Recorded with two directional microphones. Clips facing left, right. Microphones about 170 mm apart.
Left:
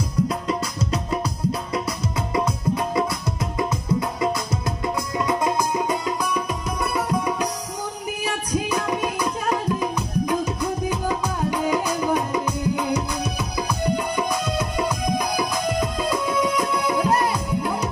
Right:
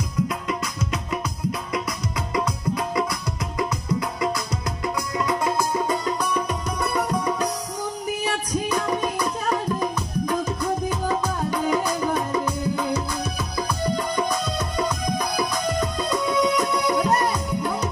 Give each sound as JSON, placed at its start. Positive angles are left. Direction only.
{"t": 0.3, "sound": "music", "side_deg": 30}
{"t": 8.6, "sound": "music", "side_deg": 10}